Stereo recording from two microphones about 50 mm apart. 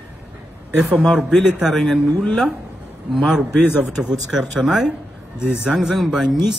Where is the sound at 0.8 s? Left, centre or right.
Centre.